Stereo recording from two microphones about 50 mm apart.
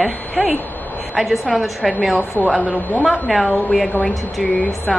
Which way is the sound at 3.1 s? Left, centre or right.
Centre.